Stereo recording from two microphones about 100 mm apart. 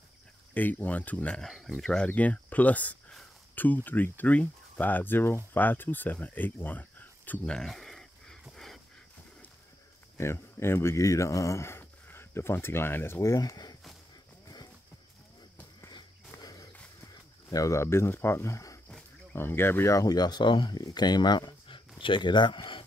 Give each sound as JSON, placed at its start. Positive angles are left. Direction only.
{"t": 0.6, "sound": "speech", "side_deg": 15}
{"t": 1.4, "sound": "speech", "side_deg": 0}
{"t": 2.0, "sound": "speech", "side_deg": 15}
{"t": 7.5, "sound": "a sound", "side_deg": 0}
{"t": 10.1, "sound": "speech", "side_deg": 25}
{"t": 15.9, "sound": "dog", "side_deg": 40}
{"t": 17.0, "sound": "speech", "side_deg": 35}